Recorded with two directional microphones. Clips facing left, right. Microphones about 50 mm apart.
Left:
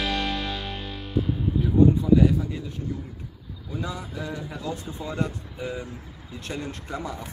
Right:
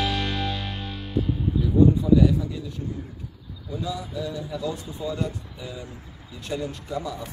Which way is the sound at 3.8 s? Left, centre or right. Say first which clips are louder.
Right 3 dB; left.